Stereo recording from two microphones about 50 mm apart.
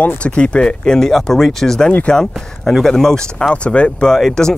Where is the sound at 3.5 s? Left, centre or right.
Left.